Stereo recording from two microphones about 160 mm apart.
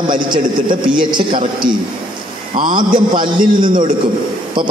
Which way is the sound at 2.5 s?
30° right (ahead or behind).